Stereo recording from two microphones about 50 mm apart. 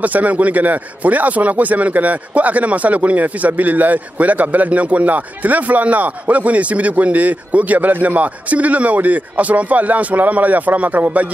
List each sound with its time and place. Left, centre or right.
0.0 s a man's voice: right